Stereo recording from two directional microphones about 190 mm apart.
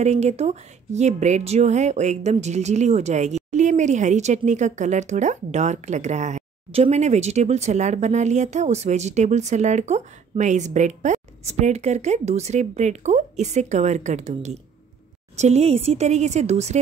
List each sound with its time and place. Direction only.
0.0 s speech: 35° right (ahead or behind)